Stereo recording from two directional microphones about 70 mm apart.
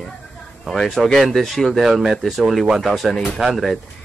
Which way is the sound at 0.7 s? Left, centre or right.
Centre.